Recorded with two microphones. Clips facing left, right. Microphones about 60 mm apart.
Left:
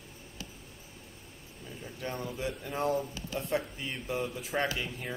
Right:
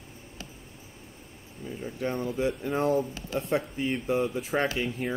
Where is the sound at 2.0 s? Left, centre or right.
Right.